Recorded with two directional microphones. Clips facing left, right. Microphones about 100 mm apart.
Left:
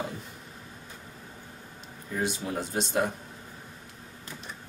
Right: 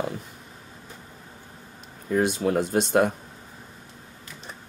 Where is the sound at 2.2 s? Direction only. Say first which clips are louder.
Right 8 dB; 60° right (ahead or behind).